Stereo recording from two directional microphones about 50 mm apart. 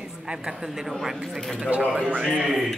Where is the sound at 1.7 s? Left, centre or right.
Right.